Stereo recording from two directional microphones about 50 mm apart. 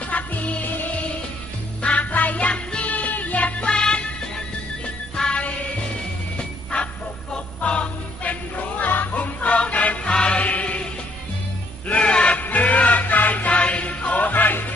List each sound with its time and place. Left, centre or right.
0.1 s music: left
5.1 s music: centre
7.6 s music: left
11.9 s music: left
12.4 s music: left